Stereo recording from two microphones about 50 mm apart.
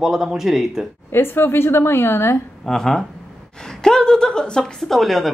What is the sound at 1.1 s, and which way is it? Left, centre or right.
A woman's voice, left.